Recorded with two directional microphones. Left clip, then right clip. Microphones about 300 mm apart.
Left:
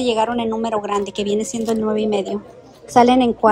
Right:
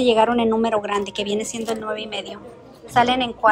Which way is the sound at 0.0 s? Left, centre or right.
Centre.